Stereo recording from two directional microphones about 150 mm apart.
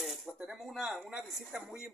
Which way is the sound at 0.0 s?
Centre (ahead or behind).